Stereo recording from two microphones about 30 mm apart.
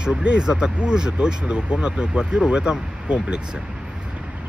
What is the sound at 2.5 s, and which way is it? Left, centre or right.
Speech, right.